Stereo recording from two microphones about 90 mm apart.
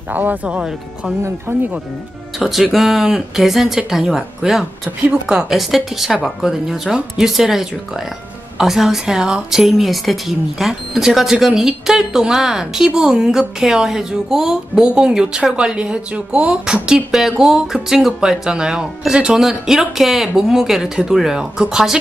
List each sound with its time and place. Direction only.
0.1 s a woman's voice: 20° right (ahead or behind)
1.2 s speech: 20° right (ahead or behind)
2.3 s a woman's voice: 5° right (ahead or behind)